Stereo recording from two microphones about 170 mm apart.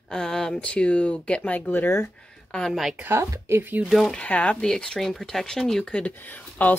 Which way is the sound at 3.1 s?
15° right (ahead or behind).